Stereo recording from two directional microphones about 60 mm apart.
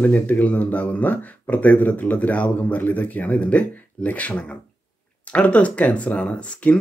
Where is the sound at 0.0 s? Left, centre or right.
Left.